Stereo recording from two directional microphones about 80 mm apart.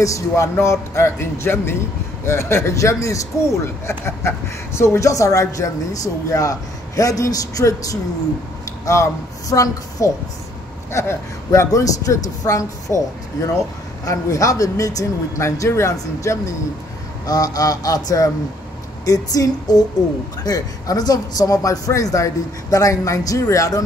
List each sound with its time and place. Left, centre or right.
0.0 s a woman's voice: left
10.9 s a woman's voice: left
14.0 s a man's voice: left
17.3 s a man's voice: left